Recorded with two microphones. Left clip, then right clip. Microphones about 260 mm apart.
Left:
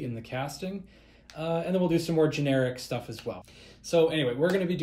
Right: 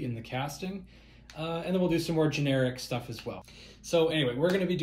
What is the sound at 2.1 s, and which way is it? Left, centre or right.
Speech, centre.